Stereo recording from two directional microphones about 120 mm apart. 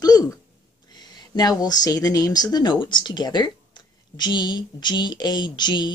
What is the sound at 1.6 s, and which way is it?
Speech, 35° left (ahead or behind).